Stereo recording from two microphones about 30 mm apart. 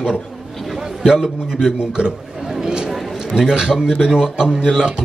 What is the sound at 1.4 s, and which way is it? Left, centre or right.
Speech, centre.